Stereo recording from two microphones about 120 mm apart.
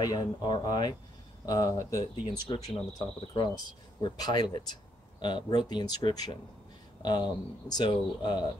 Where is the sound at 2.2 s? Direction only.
45° left (ahead or behind).